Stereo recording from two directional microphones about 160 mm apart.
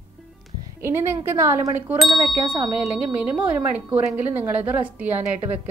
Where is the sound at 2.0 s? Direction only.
Centre (ahead or behind).